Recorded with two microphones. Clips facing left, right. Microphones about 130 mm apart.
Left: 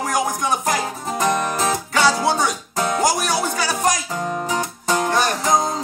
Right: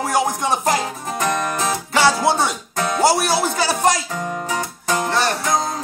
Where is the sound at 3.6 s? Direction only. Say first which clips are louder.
Right 3 dB; 25° right (ahead or behind).